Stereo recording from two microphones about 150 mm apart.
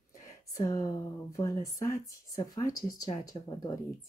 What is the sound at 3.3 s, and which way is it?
Speech, 35° left (ahead or behind).